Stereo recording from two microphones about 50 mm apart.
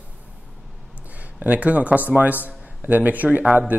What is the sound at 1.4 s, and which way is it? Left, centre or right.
A man's voice, right.